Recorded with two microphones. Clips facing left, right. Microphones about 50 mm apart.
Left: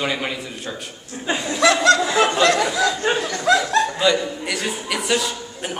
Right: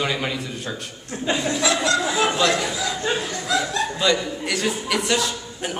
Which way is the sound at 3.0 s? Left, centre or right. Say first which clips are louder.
Even; left.